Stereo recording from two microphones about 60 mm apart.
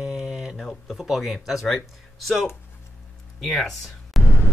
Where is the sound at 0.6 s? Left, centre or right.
Centre.